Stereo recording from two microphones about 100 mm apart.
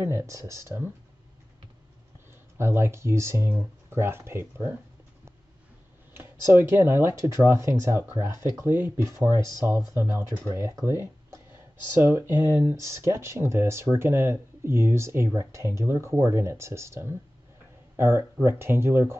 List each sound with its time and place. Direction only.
0.0 s speech: 30° right (ahead or behind)
2.5 s speech: 25° right (ahead or behind)
6.1 s speech: 25° right (ahead or behind)
8.6 s speech: 20° right (ahead or behind)
9.4 s speech: 45° left (ahead or behind)
9.9 s speech: 20° right (ahead or behind)